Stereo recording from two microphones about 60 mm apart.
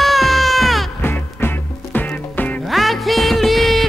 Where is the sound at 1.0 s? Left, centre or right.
Left.